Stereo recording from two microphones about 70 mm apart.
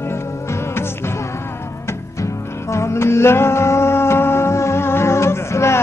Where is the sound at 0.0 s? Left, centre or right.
Left.